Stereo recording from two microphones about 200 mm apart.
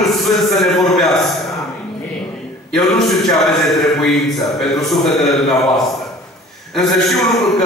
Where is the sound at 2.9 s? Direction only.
Centre (ahead or behind).